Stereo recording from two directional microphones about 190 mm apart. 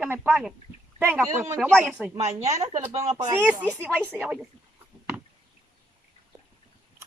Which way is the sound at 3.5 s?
10° right (ahead or behind).